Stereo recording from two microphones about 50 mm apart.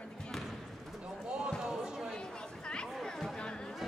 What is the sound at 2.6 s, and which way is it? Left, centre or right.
Chatter, centre.